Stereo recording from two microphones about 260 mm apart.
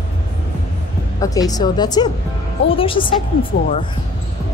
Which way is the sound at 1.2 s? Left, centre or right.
Centre.